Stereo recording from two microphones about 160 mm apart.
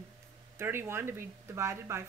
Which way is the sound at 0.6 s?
15° right (ahead or behind).